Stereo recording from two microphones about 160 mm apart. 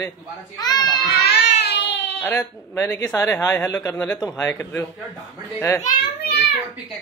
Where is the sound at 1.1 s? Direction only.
90° left.